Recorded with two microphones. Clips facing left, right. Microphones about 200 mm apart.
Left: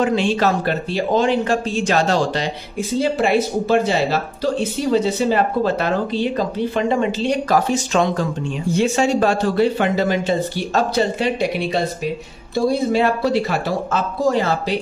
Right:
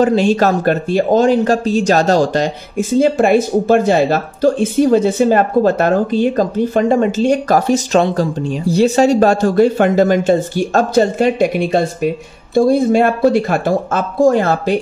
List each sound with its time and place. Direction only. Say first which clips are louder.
0.0 s speech: right 5 dB; 40° right (ahead or behind)